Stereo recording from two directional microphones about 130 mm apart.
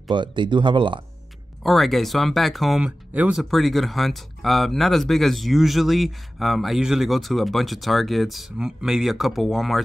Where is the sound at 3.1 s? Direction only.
10° right (ahead or behind).